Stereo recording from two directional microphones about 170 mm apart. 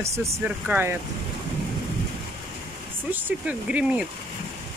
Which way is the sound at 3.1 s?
10° right (ahead or behind).